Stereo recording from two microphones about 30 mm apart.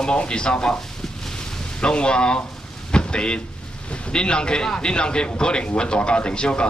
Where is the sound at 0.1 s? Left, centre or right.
Left.